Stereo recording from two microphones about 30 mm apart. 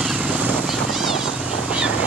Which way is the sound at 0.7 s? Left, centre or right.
Centre.